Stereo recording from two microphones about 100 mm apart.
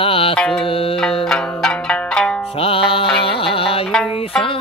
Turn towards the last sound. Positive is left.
turn(degrees=70)  # may be behind; listen again after turning